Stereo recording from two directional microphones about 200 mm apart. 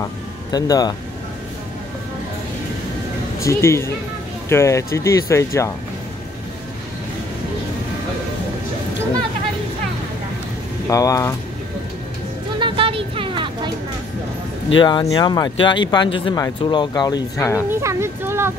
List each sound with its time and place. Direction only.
0.0 s speech: 20° left (ahead or behind)
3.3 s speech: 15° left (ahead or behind)
10.9 s speech: 15° left (ahead or behind)
12.5 s a sound: 25° right (ahead or behind)
14.8 s speech: 25° left (ahead or behind)
17.8 s speech: 10° right (ahead or behind)